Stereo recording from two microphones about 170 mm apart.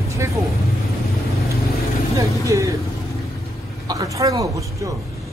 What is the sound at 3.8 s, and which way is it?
Speech, 20° right (ahead or behind).